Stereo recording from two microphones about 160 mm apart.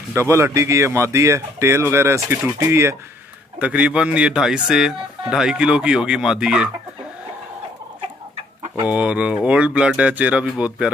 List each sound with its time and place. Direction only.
0.1 s speech: 15° right (ahead or behind)
8.8 s speech: 10° right (ahead or behind)